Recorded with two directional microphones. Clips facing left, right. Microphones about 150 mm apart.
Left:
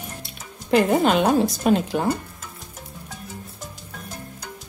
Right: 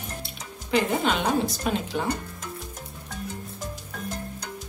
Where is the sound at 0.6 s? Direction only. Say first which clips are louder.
Left 6 dB; 50° left (ahead or behind).